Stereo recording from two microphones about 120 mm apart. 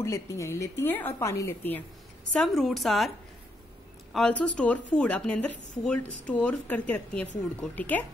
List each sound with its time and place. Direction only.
0.0 s speech: 25° left (ahead or behind)
2.3 s a woman's voice: 5° left (ahead or behind)
4.1 s speech: 10° left (ahead or behind)